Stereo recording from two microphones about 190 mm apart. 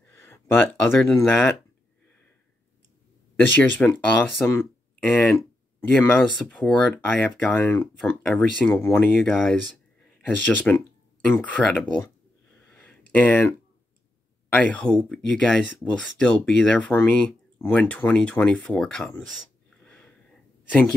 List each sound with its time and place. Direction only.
0.2 s speech: 10° left (ahead or behind)
3.3 s speech: 10° left (ahead or behind)
9.1 s speech: centre (ahead or behind)
12.7 s a sound: 10° left (ahead or behind)
14.5 s speech: 5° left (ahead or behind)